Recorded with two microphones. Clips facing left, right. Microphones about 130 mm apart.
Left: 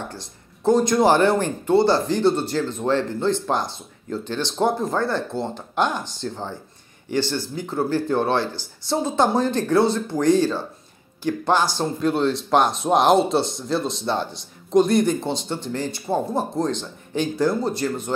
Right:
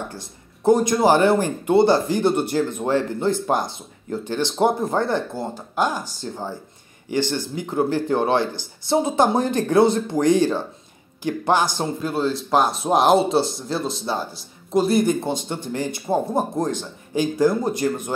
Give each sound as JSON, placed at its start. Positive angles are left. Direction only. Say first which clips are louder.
{"t": 0.7, "sound": "speech", "louder": "right 1 dB", "side_deg": -10}
{"t": 12.0, "sound": "speech", "louder": "left 4 dB", "side_deg": -5}